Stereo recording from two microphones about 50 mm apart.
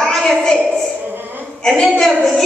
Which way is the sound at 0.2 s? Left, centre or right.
Centre.